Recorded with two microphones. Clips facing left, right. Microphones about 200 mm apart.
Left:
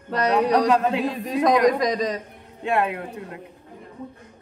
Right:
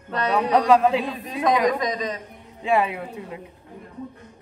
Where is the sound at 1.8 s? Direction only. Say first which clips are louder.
Left 4 dB; 35° left (ahead or behind).